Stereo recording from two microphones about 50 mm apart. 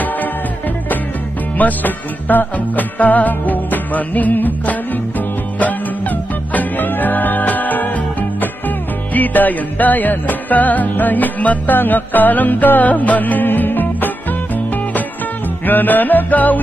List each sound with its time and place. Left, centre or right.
1.6 s music: left